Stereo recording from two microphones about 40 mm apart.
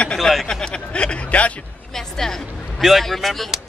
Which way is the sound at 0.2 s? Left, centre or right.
Centre.